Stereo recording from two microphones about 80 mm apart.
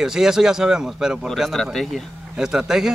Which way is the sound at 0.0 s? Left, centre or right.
Centre.